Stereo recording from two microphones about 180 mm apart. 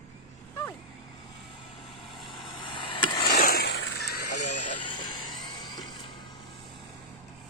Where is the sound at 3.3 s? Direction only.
55° left (ahead or behind).